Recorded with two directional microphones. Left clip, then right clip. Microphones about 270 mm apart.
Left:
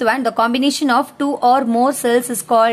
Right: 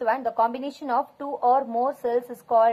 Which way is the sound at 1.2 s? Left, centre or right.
Left.